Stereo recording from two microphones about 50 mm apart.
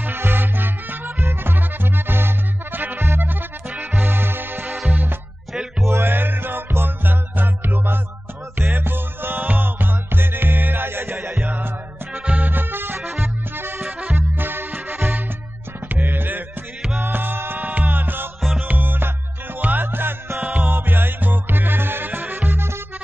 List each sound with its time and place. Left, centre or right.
0.0 s music: right
5.9 s music: right
11.4 s music: right
20.3 s music: right
20.7 s music: right